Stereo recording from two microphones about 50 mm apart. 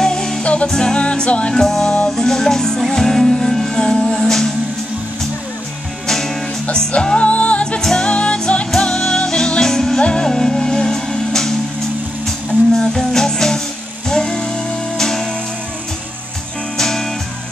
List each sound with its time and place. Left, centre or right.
0.0 s music: centre
0.4 s music: left
1.5 s music: centre
6.0 s music: centre; by 7.8 s left
7.8 s music: centre
8.1 s music: left
16.7 s music: centre